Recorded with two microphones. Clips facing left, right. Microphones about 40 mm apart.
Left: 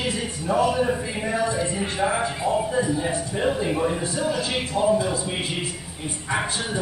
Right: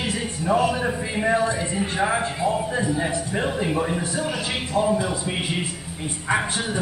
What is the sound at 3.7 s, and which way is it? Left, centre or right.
A man's voice, centre.